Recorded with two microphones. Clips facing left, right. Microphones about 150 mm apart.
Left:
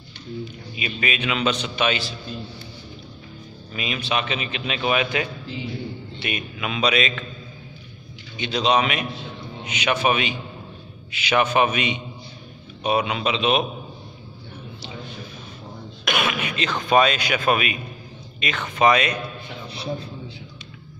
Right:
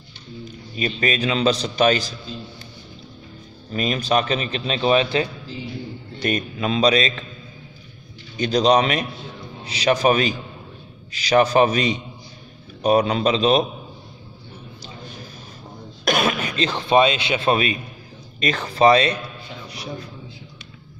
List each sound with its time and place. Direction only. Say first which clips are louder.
0.7 s a man's voice: right 5 dB; 40° right (ahead or behind)
3.7 s a man's voice: right 6 dB; 40° right (ahead or behind)
8.4 s a man's voice: right 4 dB; 40° right (ahead or behind)
16.1 s a man's voice: right 4 dB; 40° right (ahead or behind)
19.7 s a man's voice: left 4 dB; 30° left (ahead or behind)